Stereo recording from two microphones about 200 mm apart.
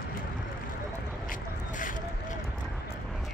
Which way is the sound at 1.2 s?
40° left (ahead or behind).